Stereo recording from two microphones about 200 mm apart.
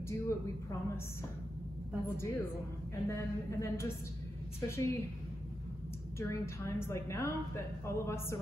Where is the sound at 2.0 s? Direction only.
15° left (ahead or behind).